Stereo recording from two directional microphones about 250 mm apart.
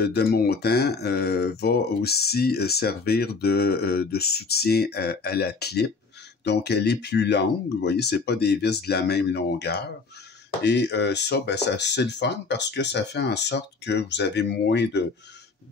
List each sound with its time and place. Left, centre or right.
0.0 s speech: left